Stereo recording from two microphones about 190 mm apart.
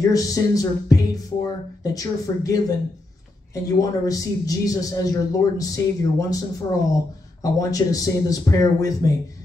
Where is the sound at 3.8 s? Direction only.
20° left (ahead or behind).